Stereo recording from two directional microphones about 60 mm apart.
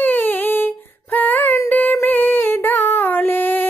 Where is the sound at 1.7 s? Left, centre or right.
Left.